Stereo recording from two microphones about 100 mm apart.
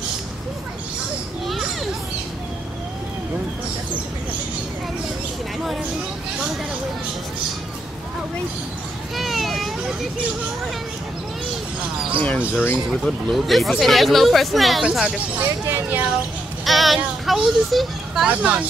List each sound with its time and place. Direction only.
1.5 s children playing: centre (ahead or behind)
9.1 s a sound: centre (ahead or behind)
12.2 s speech: 15° left (ahead or behind)
13.0 s speech: centre (ahead or behind); by 16.1 s 20° right (ahead or behind)
16.6 s speech: centre (ahead or behind)
18.3 s speech: 15° right (ahead or behind)